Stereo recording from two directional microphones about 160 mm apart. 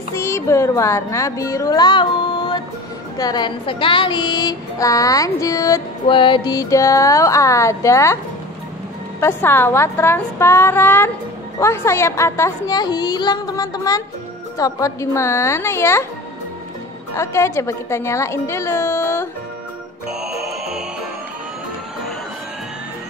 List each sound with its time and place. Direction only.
0.1 s a sound: 20° left (ahead or behind)
3.2 s child singing: 25° left (ahead or behind)
6.0 s child singing: 30° left (ahead or behind)
9.2 s a woman's voice: 15° left (ahead or behind)
11.6 s child singing: 15° left (ahead or behind)
14.6 s a woman's voice: 20° left (ahead or behind)
17.1 s a woman's voice: 15° left (ahead or behind)
20.1 s music: 5° right (ahead or behind)